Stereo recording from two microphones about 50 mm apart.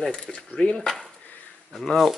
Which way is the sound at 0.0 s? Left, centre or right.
Centre.